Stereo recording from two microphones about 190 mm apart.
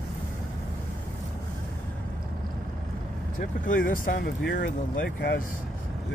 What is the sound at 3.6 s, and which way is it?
Speech, 45° left (ahead or behind).